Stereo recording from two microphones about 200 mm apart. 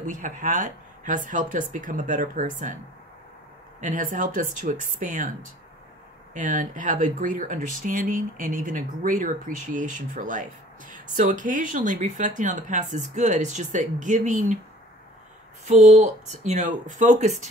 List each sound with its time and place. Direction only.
0.0 s speech: 40° right (ahead or behind)
3.8 s speech: 40° right (ahead or behind)
15.6 s speech: 35° right (ahead or behind)